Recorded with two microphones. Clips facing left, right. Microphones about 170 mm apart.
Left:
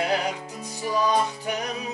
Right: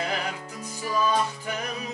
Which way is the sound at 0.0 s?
15° left (ahead or behind).